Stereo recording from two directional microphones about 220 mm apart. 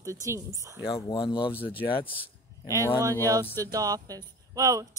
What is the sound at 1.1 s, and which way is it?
Speech, 25° left (ahead or behind).